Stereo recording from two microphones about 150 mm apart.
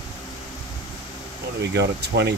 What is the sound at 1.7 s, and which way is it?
Speech, 90° right.